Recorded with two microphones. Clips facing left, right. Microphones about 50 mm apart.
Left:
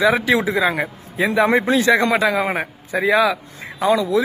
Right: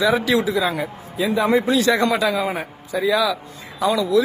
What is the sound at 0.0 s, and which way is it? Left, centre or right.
A man's voice, left.